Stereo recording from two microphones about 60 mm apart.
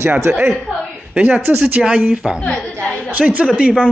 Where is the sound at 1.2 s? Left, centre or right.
Right.